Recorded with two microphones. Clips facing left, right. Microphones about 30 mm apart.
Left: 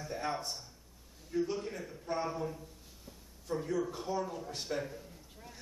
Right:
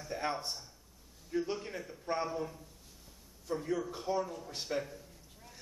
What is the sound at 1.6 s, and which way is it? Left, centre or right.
A man's voice, centre.